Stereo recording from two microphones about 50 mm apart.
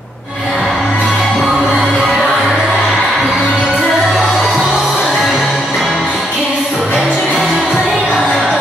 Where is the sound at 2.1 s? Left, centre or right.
Centre.